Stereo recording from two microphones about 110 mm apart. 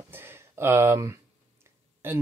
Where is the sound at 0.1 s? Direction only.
20° right (ahead or behind).